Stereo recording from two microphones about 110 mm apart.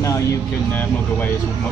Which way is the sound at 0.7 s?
15° left (ahead or behind).